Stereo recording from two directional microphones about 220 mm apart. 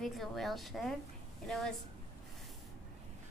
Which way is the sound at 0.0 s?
Centre (ahead or behind).